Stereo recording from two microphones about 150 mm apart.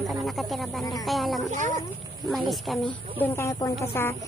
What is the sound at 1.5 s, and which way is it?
Speech, 55° right (ahead or behind).